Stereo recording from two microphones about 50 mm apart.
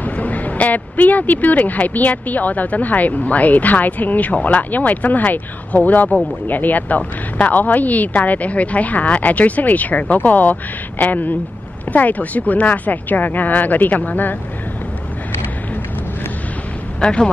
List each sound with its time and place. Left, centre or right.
0.0 s speech: left
17.0 s speech: centre